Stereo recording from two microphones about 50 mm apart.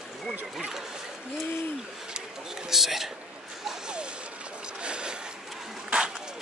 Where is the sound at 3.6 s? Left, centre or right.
Centre.